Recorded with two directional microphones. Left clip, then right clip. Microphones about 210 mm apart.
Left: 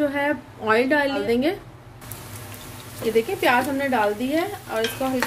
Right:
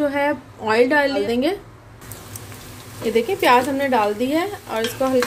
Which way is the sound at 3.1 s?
25° right (ahead or behind).